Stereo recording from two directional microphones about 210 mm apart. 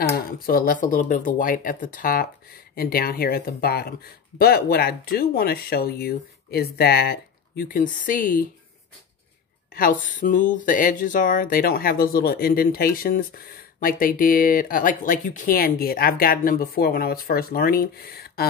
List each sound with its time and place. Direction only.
0.1 s speech: 45° left (ahead or behind)
9.8 s speech: 40° left (ahead or behind)